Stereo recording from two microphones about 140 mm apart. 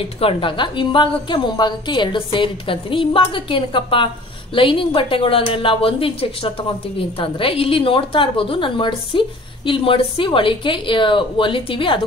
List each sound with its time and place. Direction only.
0.2 s a woman's voice: 40° left (ahead or behind)